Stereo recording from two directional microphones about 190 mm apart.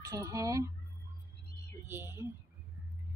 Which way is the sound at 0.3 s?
15° right (ahead or behind).